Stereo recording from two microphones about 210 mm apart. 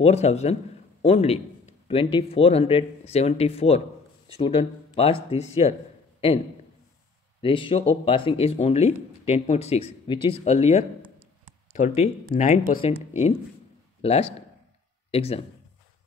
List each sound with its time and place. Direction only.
0.0 s speech: 30° left (ahead or behind)
7.4 s speech: 25° left (ahead or behind)
14.0 s speech: 30° left (ahead or behind)